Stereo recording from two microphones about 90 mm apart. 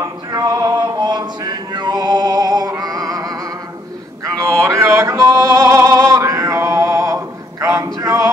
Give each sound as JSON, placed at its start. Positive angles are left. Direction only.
{"t": 0.0, "sound": "music", "side_deg": -45}